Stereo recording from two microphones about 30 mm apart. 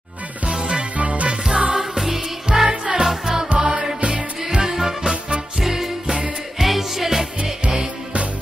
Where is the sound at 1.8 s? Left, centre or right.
Centre.